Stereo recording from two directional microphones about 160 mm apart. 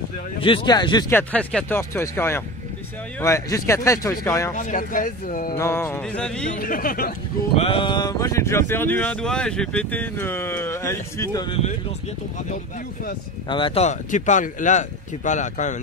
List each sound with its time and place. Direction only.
0.4 s speech: 30° left (ahead or behind)
1.1 s speech: 10° left (ahead or behind)
4.6 s speech: 55° left (ahead or behind)
5.6 s speech: 15° left (ahead or behind)
6.5 s speech: 65° left (ahead or behind)
7.5 s speech: 35° left (ahead or behind); by 11.4 s 20° left (ahead or behind)
13.5 s speech: 35° left (ahead or behind); by 15.8 s 50° left (ahead or behind)